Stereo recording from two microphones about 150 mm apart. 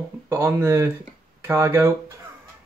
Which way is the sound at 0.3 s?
20° right (ahead or behind).